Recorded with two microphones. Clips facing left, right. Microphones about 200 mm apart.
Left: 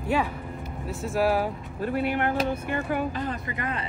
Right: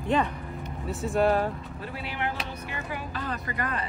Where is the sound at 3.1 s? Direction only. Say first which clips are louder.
Left 3 dB; 20° left (ahead or behind).